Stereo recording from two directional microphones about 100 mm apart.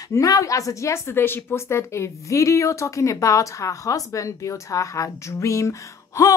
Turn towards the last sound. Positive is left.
turn(degrees=30)  # may be behind; listen again after turning